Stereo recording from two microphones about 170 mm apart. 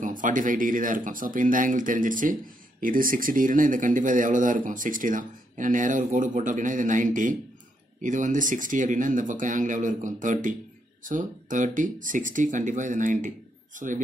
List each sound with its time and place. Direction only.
0.0 s speech: 50° right (ahead or behind)